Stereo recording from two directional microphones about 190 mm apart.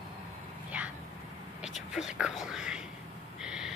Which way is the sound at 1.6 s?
Centre (ahead or behind).